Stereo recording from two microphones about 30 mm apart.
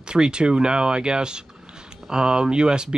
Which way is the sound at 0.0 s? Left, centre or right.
Right.